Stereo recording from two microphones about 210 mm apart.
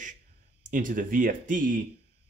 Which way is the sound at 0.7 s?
40° right (ahead or behind).